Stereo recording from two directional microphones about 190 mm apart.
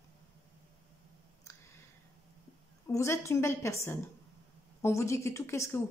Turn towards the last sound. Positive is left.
turn(degrees=15)  # may be behind; listen again after turning